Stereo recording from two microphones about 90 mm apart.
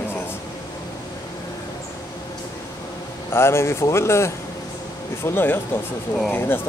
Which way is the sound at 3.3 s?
30° left (ahead or behind).